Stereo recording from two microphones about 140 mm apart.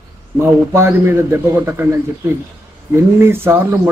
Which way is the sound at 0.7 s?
15° right (ahead or behind).